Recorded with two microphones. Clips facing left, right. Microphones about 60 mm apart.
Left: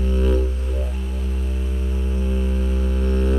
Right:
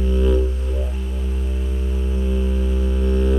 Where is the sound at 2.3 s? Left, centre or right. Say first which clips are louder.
Right 2 dB; centre.